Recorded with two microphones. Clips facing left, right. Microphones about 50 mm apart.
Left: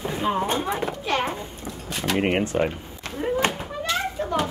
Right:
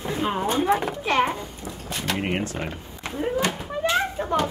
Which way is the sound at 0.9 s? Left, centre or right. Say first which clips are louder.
Right 3 dB; right.